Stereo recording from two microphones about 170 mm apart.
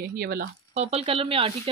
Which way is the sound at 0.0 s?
65° right (ahead or behind).